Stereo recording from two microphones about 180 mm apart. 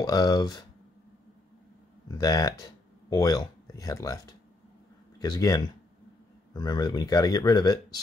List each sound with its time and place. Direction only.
0.0 s speech: 20° left (ahead or behind)
2.0 s speech: 20° left (ahead or behind)